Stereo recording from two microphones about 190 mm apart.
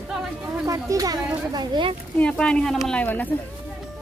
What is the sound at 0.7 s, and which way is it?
Speech, 20° right (ahead or behind).